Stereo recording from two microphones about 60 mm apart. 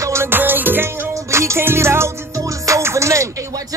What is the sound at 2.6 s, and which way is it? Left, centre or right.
Music, right.